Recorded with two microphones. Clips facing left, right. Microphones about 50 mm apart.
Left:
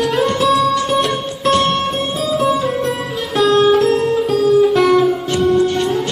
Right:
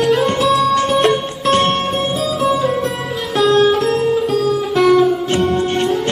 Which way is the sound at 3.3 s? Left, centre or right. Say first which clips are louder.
Left 1 dB; centre.